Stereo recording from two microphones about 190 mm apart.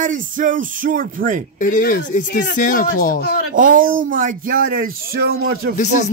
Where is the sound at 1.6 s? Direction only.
45° left (ahead or behind).